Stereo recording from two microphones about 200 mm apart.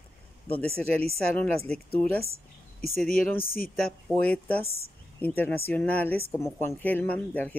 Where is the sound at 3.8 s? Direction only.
5° left (ahead or behind).